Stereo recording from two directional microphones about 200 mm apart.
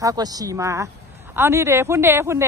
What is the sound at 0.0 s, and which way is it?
Speech, 20° right (ahead or behind).